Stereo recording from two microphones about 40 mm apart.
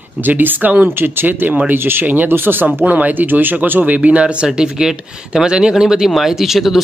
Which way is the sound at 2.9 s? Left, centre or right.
Right.